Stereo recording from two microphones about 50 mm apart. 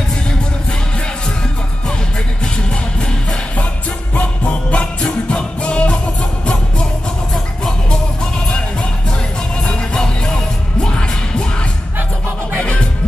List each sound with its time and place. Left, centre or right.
4.1 s music: left
9.7 s music: centre
12.5 s music: left